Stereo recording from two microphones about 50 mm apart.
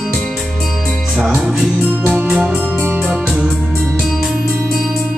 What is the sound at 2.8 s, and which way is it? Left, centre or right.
Organ, right.